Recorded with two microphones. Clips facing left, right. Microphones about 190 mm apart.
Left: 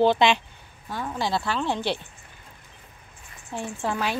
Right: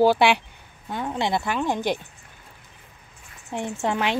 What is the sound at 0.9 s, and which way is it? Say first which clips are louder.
Speech: right 2 dB; 20° right (ahead or behind).